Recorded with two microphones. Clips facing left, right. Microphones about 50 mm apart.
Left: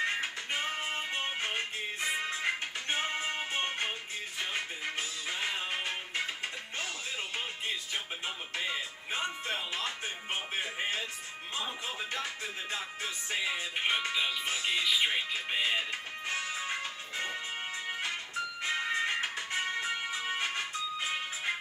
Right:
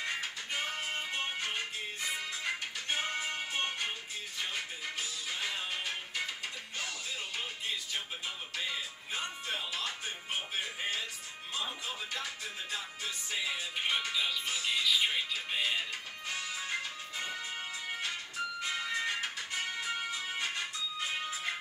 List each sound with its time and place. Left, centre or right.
0.0 s music: left
8.5 s music: left
18.6 s music: left